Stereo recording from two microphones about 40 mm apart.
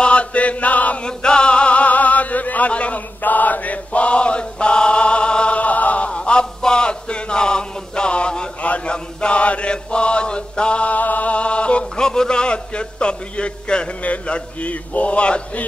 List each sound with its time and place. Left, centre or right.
0.0 s chant: left
1.0 s a sound: left
3.2 s chant: left
8.6 s a sound: left
8.9 s chant: left
14.0 s a man's voice: left